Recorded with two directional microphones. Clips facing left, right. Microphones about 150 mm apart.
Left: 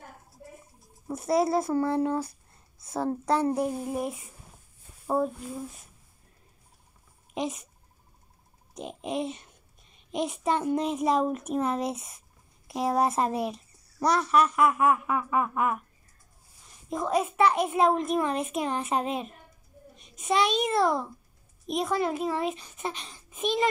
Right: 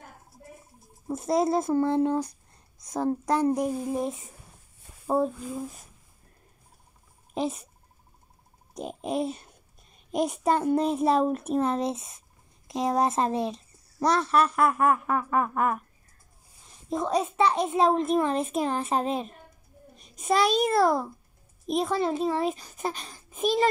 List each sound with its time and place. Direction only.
1.0 s speech: 20° right (ahead or behind)
7.3 s a child's voice: 30° right (ahead or behind)
8.7 s a child's voice: 35° right (ahead or behind)
11.1 s speech: 5° right (ahead or behind)
11.3 s a child's voice: 30° right (ahead or behind)
14.7 s speech: 5° left (ahead or behind)
16.9 s speech: 5° left (ahead or behind)
17.4 s a child's voice: 25° right (ahead or behind)